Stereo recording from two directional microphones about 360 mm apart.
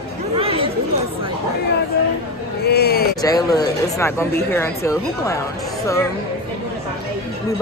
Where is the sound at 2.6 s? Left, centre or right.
Left.